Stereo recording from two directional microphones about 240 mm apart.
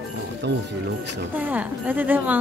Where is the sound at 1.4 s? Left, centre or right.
Centre.